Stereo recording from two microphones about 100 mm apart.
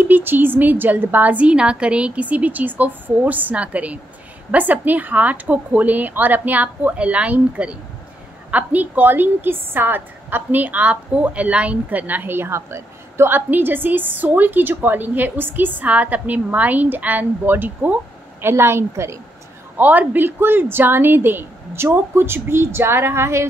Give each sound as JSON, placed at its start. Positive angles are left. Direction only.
{"t": 0.0, "sound": "a woman's voice", "side_deg": -20}